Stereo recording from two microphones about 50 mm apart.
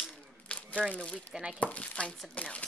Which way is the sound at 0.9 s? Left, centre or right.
Left.